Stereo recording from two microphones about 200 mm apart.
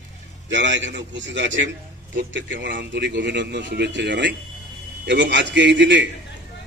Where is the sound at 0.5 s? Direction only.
65° right (ahead or behind).